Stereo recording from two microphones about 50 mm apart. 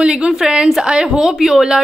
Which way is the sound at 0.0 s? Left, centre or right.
Centre.